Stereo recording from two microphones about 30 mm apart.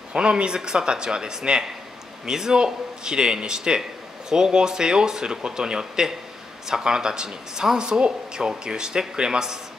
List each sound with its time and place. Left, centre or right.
0.1 s speech: right
7.8 s speech: right